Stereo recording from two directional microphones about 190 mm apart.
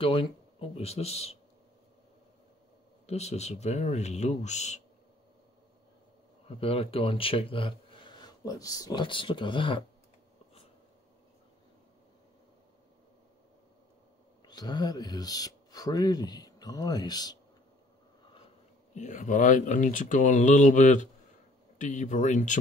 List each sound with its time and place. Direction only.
0.0 s speech: 30° left (ahead or behind)
3.1 s speech: 35° left (ahead or behind)
6.4 s speech: 30° left (ahead or behind)
14.4 s speech: 20° left (ahead or behind)
18.9 s speech: 40° left (ahead or behind)